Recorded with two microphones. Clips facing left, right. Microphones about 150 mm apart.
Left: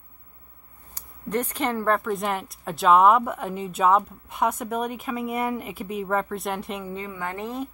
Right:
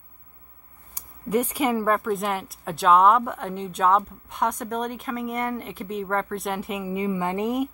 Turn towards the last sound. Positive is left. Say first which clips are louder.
# right 6 dB
turn(degrees=-15)  # may be behind; listen again after turning